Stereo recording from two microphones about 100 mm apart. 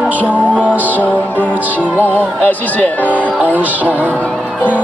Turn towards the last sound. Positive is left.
turn(degrees=15)  # may be behind; listen again after turning